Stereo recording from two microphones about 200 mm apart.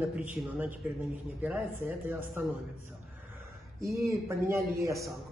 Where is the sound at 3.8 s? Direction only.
15° right (ahead or behind).